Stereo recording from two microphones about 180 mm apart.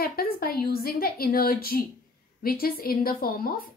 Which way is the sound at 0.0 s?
55° left (ahead or behind).